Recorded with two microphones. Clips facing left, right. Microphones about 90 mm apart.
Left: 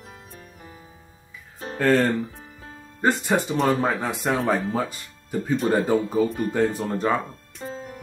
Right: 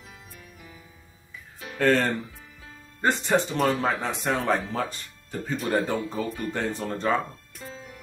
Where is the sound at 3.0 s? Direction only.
10° left (ahead or behind).